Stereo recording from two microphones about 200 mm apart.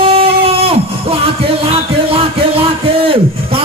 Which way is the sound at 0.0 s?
30° right (ahead or behind).